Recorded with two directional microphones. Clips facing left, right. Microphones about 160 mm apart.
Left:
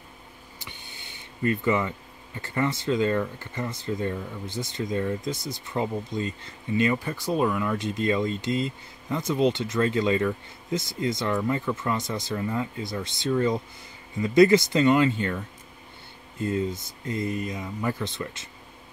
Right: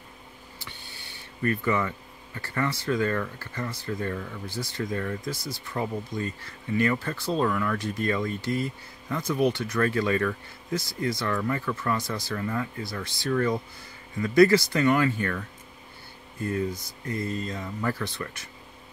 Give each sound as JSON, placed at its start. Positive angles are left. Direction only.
{"t": 0.6, "sound": "speech", "side_deg": 15}